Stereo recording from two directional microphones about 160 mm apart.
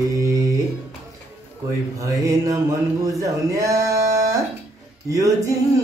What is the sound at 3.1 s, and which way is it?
Speech, 20° right (ahead or behind).